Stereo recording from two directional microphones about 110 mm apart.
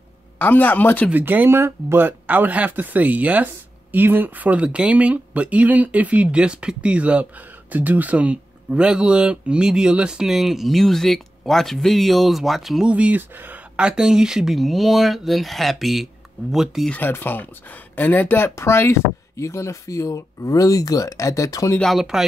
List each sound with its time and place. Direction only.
0.4 s speech: 15° left (ahead or behind)
1.1 s speech: 15° right (ahead or behind)
16.9 s speech: 20° left (ahead or behind)
21.7 s speech: centre (ahead or behind)